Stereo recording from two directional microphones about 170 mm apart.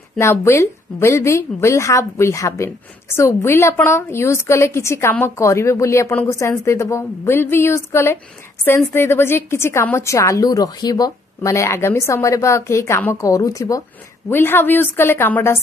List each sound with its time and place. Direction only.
0.2 s a woman's voice: 15° left (ahead or behind)